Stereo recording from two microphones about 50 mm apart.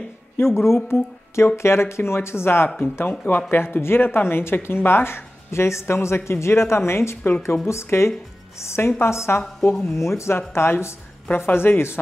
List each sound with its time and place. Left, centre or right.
0.4 s a woman's voice: left
11.3 s speech: left